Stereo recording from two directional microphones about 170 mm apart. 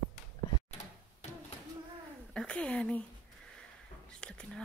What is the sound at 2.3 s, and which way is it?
Speech, 5° left (ahead or behind).